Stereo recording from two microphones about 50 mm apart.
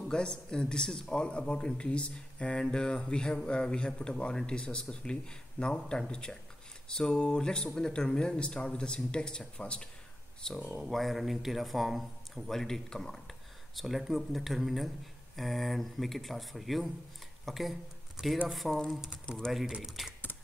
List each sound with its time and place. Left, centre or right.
0.1 s speech: centre
10.8 s a man's voice: centre
13.7 s a man's voice: centre
18.2 s speech: centre
18.5 s a man's voice: centre
19.2 s speech: centre
20.0 s a man's voice: centre